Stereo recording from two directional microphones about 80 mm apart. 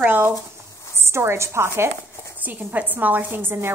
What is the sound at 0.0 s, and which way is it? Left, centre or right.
A woman's voice, right.